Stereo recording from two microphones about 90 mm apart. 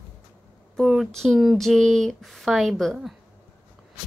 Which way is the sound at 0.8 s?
Centre (ahead or behind).